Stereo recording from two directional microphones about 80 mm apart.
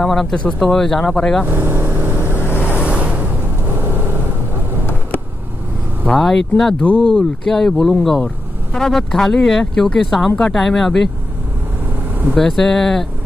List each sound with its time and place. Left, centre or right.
0.0 s speech: centre
1.5 s vehicle: right
2.3 s vehicle: left
2.6 s vehicle: centre
6.1 s speech: centre
12.4 s speech: centre